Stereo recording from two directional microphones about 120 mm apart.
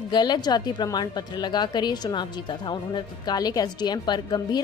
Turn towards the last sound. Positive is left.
turn(degrees=35)  # may be behind; listen again after turning